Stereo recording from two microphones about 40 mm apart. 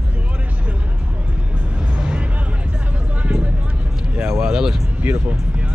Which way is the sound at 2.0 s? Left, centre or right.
Right.